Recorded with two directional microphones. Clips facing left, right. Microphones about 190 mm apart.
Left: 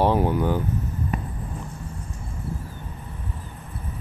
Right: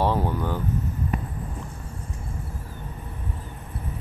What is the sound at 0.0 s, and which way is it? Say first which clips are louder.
Speech: left 4 dB; 15° left (ahead or behind).